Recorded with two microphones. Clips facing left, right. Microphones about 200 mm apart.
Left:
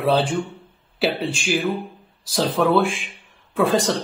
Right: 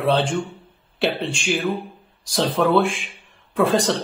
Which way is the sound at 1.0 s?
Centre (ahead or behind).